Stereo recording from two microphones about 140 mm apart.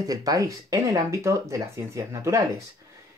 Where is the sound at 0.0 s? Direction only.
25° right (ahead or behind).